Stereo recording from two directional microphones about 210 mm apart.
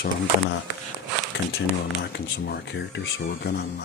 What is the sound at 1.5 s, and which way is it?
Speech, 55° left (ahead or behind).